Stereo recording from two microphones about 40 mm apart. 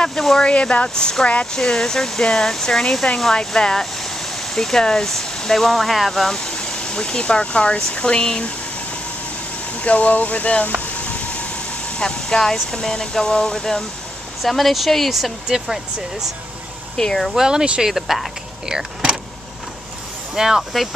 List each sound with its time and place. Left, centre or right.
0.2 s speech: centre
0.5 s speech: left; by 6.3 s centre
6.3 s speech: left
9.8 s speech: left
11.0 s a sound: left
12.0 s speech: centre
14.4 s speech: centre
15.4 s speech: centre
16.9 s speech: centre
17.8 s speech: centre
18.7 s speech: centre
20.3 s speech: centre